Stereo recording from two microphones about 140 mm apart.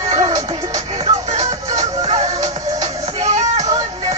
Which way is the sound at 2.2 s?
25° right (ahead or behind).